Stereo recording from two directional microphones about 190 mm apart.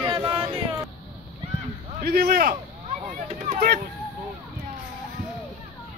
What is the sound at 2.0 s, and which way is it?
Speech, 55° right (ahead or behind).